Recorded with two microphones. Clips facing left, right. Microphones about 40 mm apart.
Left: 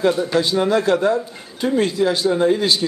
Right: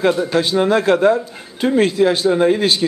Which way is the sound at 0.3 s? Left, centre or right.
Right.